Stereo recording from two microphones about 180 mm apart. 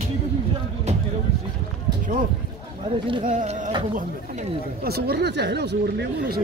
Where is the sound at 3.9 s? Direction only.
50° right (ahead or behind); by 6.4 s 70° right (ahead or behind).